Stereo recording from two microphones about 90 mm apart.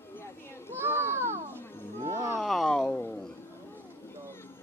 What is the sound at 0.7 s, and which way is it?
Children playing, 25° right (ahead or behind).